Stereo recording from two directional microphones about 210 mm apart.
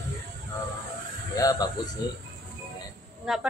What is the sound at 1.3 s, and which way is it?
Speech, 15° left (ahead or behind).